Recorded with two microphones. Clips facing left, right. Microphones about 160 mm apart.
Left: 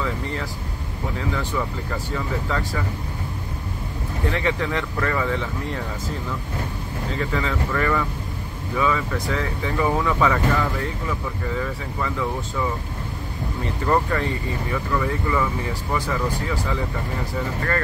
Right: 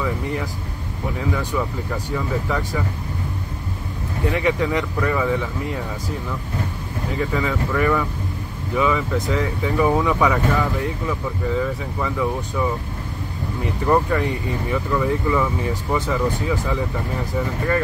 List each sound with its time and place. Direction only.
0.0 s speech: 15° right (ahead or behind)
4.3 s speech: 15° right (ahead or behind)
7.2 s speech: 10° right (ahead or behind)
12.0 s speech: 15° right (ahead or behind)
13.8 s speech: 10° right (ahead or behind)